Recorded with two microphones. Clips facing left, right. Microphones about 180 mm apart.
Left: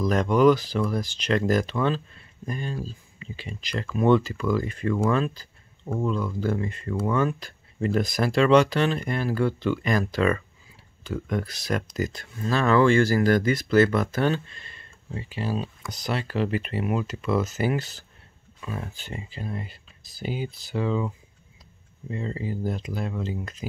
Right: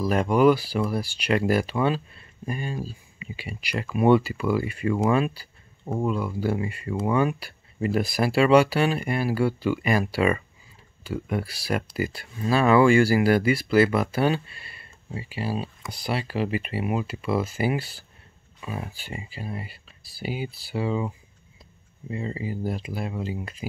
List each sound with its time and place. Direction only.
0.0 s speech: 5° right (ahead or behind)
22.1 s speech: 5° right (ahead or behind)